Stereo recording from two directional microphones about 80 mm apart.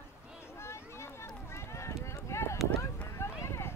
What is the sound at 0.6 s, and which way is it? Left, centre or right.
Run, left.